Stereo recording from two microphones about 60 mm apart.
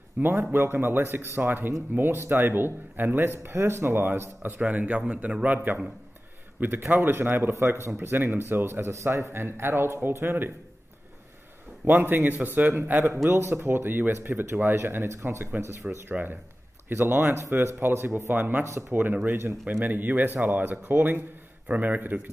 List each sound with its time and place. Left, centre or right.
0.2 s speech: right
4.6 s a man's voice: right
6.9 s speech: right
7.5 s speech: right
8.0 s speech: right
8.9 s speech: right
11.8 s speech: right
15.0 s speech: right
16.1 s speech: right
18.3 s a man's voice: right